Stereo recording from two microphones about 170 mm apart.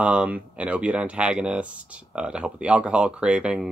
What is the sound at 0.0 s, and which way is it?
Speech, 5° right (ahead or behind).